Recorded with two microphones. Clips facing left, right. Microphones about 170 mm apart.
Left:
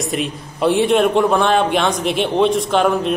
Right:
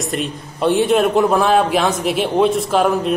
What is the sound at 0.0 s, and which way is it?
A man's voice, centre (ahead or behind).